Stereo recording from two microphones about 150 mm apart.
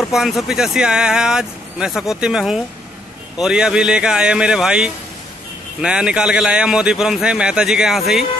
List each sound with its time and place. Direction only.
0.1 s a man's voice: centre (ahead or behind)